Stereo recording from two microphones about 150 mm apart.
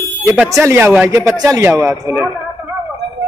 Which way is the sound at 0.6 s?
15° right (ahead or behind).